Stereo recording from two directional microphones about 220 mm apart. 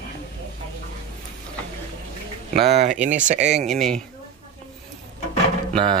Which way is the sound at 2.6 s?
30° right (ahead or behind).